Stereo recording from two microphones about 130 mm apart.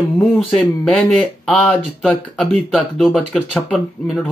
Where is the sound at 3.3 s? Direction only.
10° left (ahead or behind).